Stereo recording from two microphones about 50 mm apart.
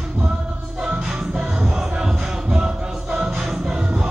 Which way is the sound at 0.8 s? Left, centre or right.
Centre.